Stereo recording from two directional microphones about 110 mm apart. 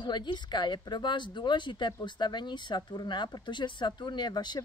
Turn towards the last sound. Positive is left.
turn(degrees=40)  # may be behind; listen again after turning